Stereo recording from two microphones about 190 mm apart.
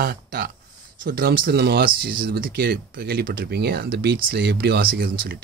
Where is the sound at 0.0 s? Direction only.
55° right (ahead or behind).